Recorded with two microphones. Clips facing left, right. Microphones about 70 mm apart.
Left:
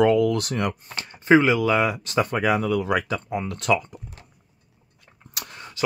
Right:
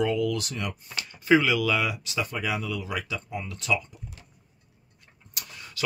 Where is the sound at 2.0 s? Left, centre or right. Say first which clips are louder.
Left 8 dB; left.